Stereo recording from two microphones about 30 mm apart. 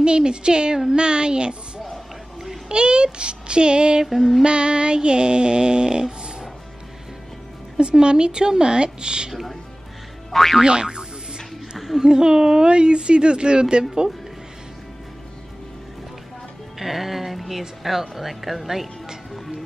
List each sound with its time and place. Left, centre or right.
0.0 s music: right
2.7 s music: right
4.0 s female singing: centre
4.4 s music: right
7.7 s speech: right
10.3 s music: centre
10.6 s speech: right
12.0 s music: right
16.7 s speech: centre